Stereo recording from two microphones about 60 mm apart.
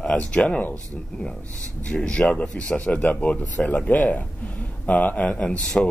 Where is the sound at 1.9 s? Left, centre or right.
Centre.